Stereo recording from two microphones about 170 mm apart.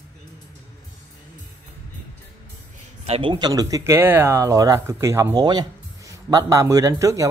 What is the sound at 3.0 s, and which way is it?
Speech, 35° right (ahead or behind).